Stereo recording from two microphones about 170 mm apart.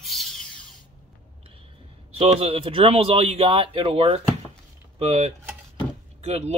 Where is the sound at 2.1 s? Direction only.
35° right (ahead or behind).